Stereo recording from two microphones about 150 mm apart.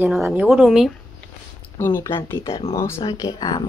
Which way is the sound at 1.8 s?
15° left (ahead or behind).